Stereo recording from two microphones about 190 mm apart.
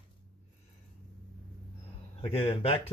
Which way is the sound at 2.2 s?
30° left (ahead or behind).